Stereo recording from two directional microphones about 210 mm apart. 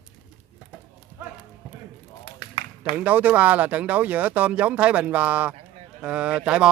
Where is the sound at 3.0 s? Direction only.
5° right (ahead or behind).